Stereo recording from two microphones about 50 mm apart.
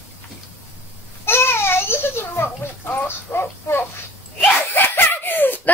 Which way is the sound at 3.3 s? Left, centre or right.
Left.